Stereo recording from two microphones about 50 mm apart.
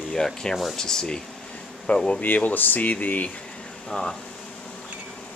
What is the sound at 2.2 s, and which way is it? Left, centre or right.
Speech, left.